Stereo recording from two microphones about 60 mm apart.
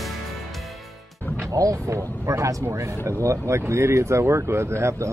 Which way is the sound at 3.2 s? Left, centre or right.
Right.